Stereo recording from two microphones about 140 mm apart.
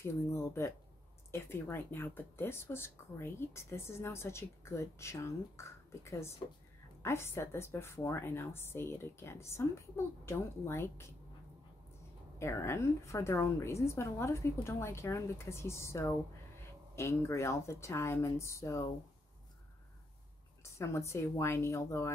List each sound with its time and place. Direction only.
0.0 s a woman's voice: 20° left (ahead or behind)
12.4 s a woman's voice: 20° left (ahead or behind)
20.6 s a woman's voice: 20° left (ahead or behind)